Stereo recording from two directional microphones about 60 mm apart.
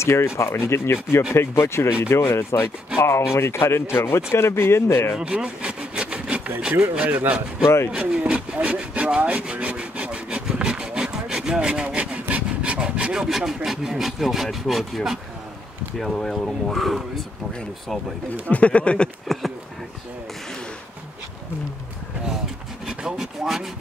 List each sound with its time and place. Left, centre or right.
0.0 s speech: left
5.2 s wood: centre
6.7 s speech: right
7.6 s speech: left
7.9 s speech: centre
8.2 s rub: centre
16.0 s speech: centre
18.5 s speech: left
19.3 s speech: centre
22.8 s speech: centre